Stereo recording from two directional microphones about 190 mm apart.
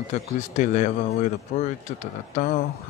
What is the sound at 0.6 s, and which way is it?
Speech, 40° left (ahead or behind).